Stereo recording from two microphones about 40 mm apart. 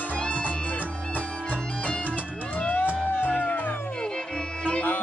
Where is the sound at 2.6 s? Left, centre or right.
Left.